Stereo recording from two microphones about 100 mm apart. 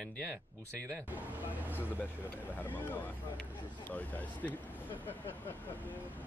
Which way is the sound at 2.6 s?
20° left (ahead or behind).